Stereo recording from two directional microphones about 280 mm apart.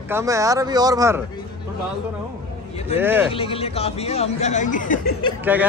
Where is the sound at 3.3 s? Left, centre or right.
Centre.